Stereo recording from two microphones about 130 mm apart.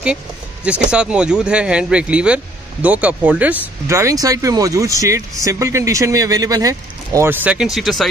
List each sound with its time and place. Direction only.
0.7 s speech: 10° right (ahead or behind); by 7.3 s 25° right (ahead or behind)
7.4 s speech: 5° right (ahead or behind)